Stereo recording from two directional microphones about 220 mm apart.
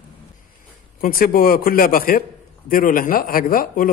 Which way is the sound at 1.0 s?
40° left (ahead or behind).